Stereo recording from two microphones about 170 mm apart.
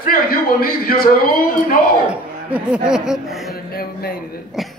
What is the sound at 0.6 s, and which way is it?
Speech, 60° left (ahead or behind).